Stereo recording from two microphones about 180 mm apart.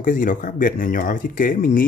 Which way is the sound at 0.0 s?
50° left (ahead or behind).